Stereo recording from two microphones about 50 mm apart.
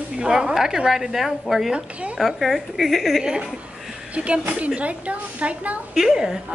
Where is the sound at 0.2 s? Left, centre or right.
Centre.